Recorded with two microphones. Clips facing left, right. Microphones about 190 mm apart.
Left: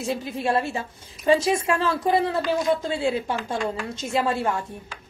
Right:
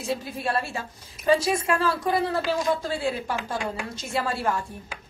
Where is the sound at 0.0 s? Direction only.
25° left (ahead or behind).